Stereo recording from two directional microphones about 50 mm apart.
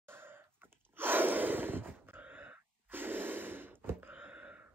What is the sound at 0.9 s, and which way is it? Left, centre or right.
Gasp, right.